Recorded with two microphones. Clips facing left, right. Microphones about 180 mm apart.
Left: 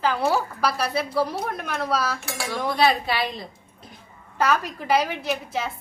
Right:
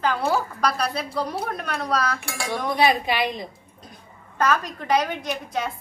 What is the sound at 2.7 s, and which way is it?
Speech, 15° right (ahead or behind).